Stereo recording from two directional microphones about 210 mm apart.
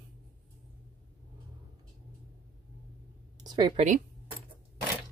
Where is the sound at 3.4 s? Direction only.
20° right (ahead or behind).